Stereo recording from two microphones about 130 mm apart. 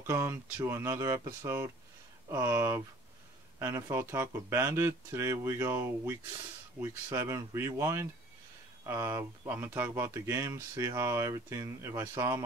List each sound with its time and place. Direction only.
0.0 s speech: 20° right (ahead or behind)